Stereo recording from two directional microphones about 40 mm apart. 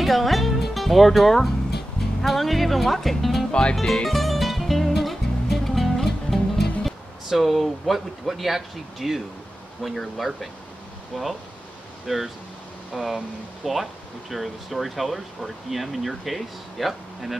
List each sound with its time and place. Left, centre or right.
0.0 s music: centre
2.2 s speech: centre
3.7 s music: centre
9.8 s speech: centre